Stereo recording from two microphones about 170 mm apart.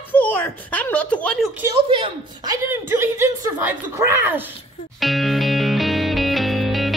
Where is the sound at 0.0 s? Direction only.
10° left (ahead or behind).